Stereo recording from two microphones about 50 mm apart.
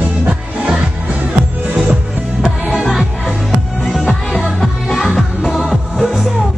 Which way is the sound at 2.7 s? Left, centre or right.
Centre.